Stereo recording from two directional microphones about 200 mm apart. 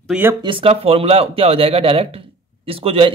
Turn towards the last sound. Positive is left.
turn(degrees=-25)  # may be behind; listen again after turning